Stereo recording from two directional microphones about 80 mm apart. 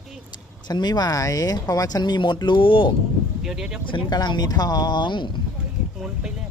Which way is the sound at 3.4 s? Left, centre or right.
Centre.